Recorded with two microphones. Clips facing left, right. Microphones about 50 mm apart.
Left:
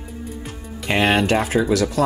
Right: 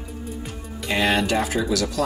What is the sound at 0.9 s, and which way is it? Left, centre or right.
Speech, left.